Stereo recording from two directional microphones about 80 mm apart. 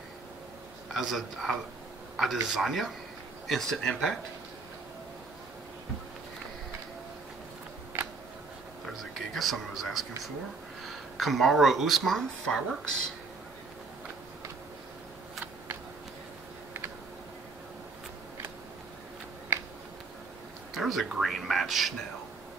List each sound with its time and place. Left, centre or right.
0.9 s speech: centre
7.9 s a sound: right
8.8 s speech: centre
20.7 s speech: centre